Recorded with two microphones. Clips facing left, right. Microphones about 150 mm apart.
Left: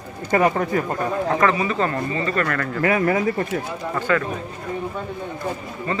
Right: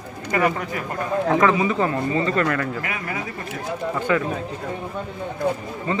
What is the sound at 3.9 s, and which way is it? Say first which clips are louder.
Speech: left 1 dB; 10° right (ahead or behind).